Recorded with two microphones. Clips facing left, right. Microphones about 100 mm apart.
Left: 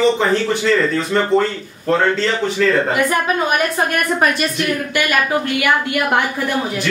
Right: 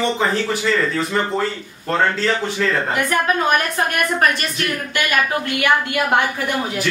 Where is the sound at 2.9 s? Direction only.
15° left (ahead or behind).